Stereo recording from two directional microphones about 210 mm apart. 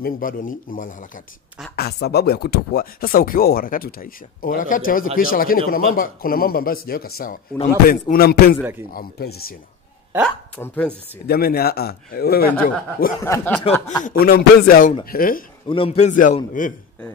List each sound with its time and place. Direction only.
0.0 s speech: 40° left (ahead or behind)
11.2 s speech: 45° left (ahead or behind)
13.2 s speech: 10° left (ahead or behind)
14.0 s speech: 45° left (ahead or behind)
15.7 s speech: 25° left (ahead or behind)